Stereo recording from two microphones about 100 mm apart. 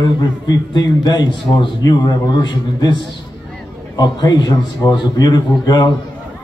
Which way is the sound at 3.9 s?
45° left (ahead or behind).